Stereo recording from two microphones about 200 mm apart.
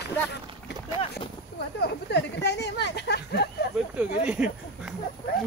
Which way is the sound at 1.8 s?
55° left (ahead or behind).